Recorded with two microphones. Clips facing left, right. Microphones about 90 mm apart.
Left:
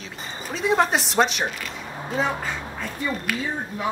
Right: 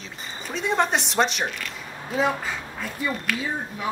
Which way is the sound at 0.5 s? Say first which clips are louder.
Left 2 dB; centre (ahead or behind).